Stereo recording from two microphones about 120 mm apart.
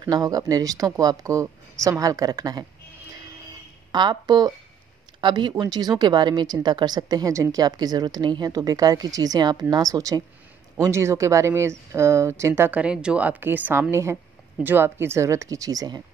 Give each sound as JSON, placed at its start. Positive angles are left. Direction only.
{"t": 0.0, "sound": "a woman's voice", "side_deg": -35}
{"t": 3.9, "sound": "a woman's voice", "side_deg": -40}
{"t": 12.8, "sound": "a woman's voice", "side_deg": -10}